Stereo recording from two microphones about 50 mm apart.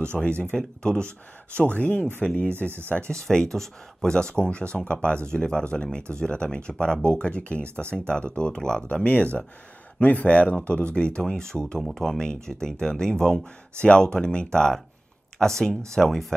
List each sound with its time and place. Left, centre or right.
0.1 s speech: left
0.6 s speech: centre
3.1 s speech: centre
9.0 s speech: left; by 16.3 s centre